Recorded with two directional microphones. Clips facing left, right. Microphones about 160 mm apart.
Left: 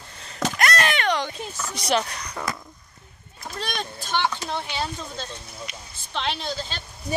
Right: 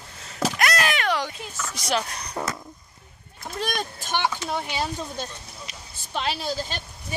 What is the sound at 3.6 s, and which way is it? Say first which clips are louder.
Speech: right 3 dB; 10° right (ahead or behind).